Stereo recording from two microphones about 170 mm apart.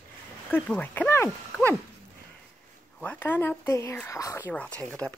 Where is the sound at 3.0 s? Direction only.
10° left (ahead or behind).